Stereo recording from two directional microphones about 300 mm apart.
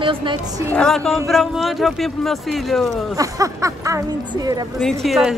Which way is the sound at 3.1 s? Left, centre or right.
Centre.